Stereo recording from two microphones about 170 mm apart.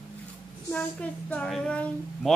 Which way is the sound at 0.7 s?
10° left (ahead or behind).